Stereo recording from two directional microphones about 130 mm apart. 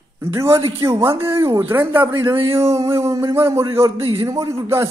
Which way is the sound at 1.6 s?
15° right (ahead or behind).